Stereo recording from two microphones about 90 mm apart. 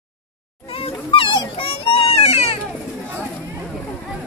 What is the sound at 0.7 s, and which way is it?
Dog, 85° left.